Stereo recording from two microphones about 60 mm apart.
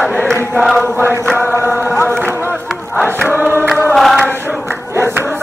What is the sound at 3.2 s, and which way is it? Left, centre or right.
Choir, right.